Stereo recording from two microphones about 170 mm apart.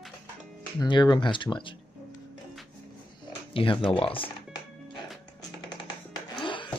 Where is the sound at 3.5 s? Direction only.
30° left (ahead or behind).